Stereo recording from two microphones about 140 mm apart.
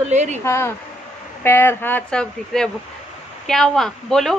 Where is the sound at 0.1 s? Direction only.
55° right (ahead or behind).